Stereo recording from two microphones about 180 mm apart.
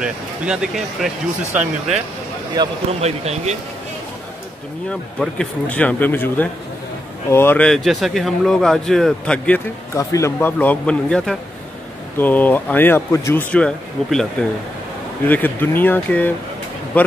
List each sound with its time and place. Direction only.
0.0 s speech: 5° right (ahead or behind)
2.6 s speech: 20° right (ahead or behind)
2.9 s speech: 35° right (ahead or behind)
4.8 s speech: 5° left (ahead or behind)
9.9 s speech: 15° left (ahead or behind)
15.2 s speech: 10° left (ahead or behind)